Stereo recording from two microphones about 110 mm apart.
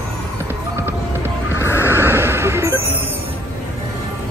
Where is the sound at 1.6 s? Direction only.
25° left (ahead or behind).